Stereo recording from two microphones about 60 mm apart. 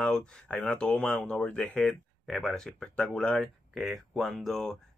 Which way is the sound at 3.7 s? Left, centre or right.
Centre.